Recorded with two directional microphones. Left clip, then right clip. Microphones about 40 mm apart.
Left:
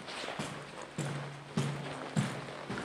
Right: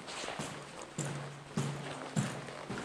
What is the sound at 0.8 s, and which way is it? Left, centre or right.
Music, right.